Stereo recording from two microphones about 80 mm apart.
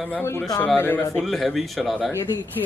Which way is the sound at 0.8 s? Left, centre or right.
Left.